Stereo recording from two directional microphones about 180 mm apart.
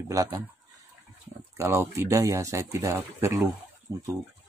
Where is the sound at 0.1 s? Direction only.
20° right (ahead or behind).